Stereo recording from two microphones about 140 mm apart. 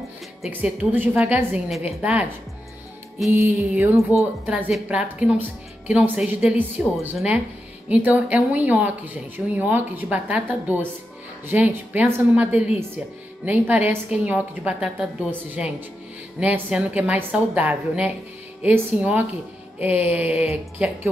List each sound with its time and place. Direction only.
0.5 s speech: 10° right (ahead or behind)
3.3 s speech: 15° right (ahead or behind)
3.9 s speech: 20° left (ahead or behind)
4.5 s speech: 5° right (ahead or behind)